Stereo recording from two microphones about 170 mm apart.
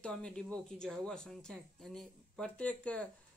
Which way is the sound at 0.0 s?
5° left (ahead or behind).